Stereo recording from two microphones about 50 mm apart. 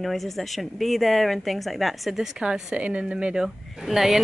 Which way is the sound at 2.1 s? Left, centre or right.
Centre.